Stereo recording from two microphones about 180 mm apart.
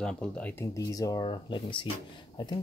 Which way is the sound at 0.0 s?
5° left (ahead or behind).